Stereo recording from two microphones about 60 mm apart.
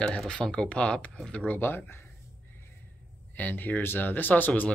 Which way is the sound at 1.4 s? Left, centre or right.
Left.